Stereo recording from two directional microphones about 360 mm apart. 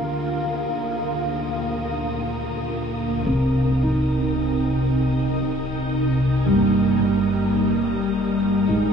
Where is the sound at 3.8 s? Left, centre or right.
Centre.